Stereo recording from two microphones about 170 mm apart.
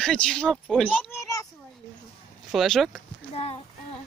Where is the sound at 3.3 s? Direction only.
35° left (ahead or behind).